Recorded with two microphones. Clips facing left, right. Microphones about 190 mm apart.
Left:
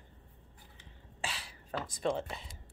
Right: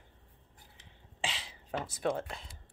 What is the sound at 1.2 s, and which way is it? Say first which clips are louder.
Beatboxing: right 2 dB; 20° right (ahead or behind).